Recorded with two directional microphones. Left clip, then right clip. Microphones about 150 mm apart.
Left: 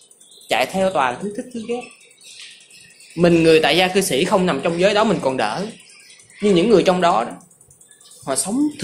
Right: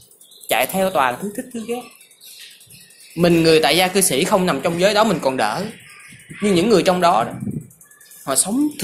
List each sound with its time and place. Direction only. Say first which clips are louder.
0.5 s speech: even; 50° right (ahead or behind)
3.2 s speech: left 1 dB; 50° right (ahead or behind)
8.3 s speech: right 1 dB; 45° right (ahead or behind)